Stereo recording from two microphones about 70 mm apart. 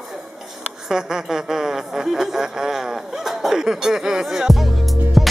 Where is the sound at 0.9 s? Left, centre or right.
Centre.